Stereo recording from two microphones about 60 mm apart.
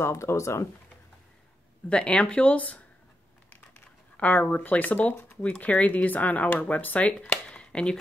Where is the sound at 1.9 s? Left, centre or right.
Centre.